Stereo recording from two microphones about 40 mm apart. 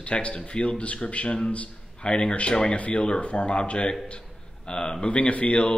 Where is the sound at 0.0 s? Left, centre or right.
Left.